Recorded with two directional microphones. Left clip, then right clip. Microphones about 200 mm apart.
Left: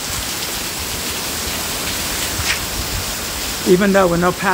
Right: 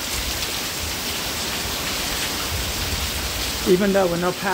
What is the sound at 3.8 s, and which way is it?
Speech, 15° left (ahead or behind).